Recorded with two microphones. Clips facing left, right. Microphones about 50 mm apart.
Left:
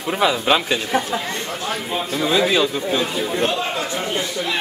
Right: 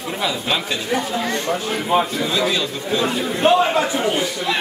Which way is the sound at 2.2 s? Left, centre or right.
Centre.